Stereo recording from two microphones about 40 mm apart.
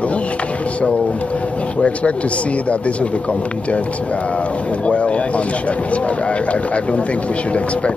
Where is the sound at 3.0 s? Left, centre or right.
Left.